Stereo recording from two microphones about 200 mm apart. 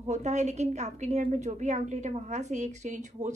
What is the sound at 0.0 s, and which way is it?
A woman's voice, 35° right (ahead or behind).